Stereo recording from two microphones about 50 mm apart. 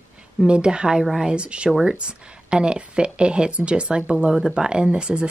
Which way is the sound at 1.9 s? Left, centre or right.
Centre.